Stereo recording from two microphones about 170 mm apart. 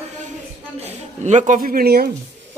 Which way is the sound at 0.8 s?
45° right (ahead or behind).